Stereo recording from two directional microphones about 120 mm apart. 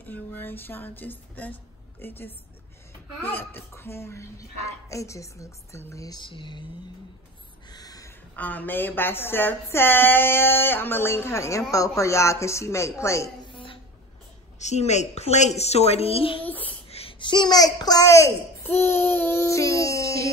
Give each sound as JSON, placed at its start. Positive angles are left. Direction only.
{"t": 0.0, "sound": "music", "side_deg": 15}
{"t": 3.3, "sound": "a child's voice", "side_deg": 20}
{"t": 6.2, "sound": "speech", "side_deg": 45}
{"t": 7.7, "sound": "a sound", "side_deg": 30}
{"t": 8.4, "sound": "a child's voice", "side_deg": 15}
{"t": 13.5, "sound": "a sound", "side_deg": 45}
{"t": 14.6, "sound": "a woman's voice", "side_deg": 70}
{"t": 16.4, "sound": "speech", "side_deg": 15}
{"t": 17.2, "sound": "a child's voice", "side_deg": 40}